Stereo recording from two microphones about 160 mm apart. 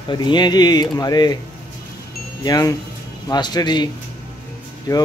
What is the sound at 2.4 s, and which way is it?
Speech, 20° left (ahead or behind).